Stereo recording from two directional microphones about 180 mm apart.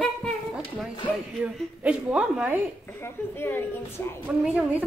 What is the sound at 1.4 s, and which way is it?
A woman's voice, 10° right (ahead or behind).